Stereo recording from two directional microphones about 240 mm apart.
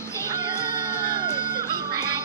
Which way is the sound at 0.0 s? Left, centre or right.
Centre.